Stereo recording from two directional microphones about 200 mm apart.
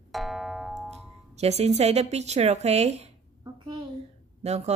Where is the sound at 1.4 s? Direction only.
30° right (ahead or behind).